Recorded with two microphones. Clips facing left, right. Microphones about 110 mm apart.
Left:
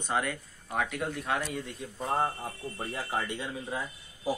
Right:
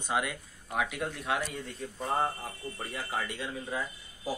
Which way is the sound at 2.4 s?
25° left (ahead or behind).